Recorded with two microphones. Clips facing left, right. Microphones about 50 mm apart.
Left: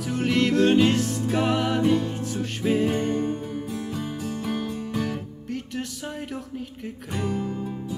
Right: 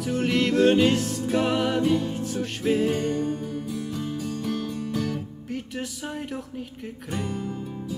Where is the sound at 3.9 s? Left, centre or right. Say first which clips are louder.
Even; centre.